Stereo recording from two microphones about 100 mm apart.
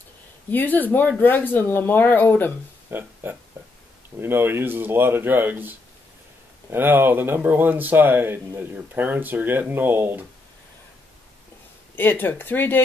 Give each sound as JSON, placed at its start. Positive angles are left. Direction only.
{"t": 0.5, "sound": "speech", "side_deg": 15}
{"t": 2.9, "sound": "speech", "side_deg": -20}
{"t": 3.6, "sound": "a sound", "side_deg": -25}
{"t": 4.2, "sound": "speech", "side_deg": -25}
{"t": 11.9, "sound": "speech", "side_deg": 20}